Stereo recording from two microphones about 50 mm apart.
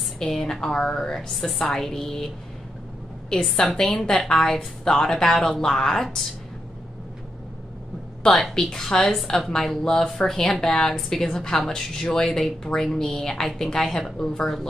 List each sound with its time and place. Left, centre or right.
0.2 s speech: centre
1.3 s speech: centre
3.3 s speech: centre
8.4 s speech: centre